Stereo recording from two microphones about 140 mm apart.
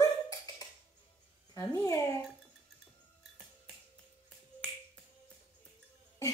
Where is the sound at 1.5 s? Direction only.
25° left (ahead or behind).